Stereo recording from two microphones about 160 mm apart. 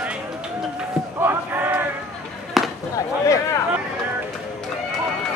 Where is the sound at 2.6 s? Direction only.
Centre (ahead or behind).